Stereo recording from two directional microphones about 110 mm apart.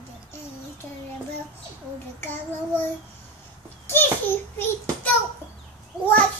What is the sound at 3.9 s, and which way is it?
Child singing, 20° left (ahead or behind).